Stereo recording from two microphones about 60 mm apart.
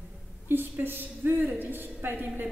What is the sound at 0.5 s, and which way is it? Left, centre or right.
A woman's voice, right.